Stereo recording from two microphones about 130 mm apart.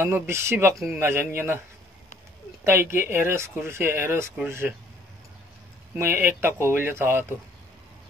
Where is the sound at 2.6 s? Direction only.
20° right (ahead or behind).